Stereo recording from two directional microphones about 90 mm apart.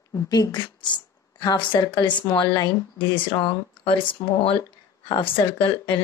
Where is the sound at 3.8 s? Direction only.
85° left.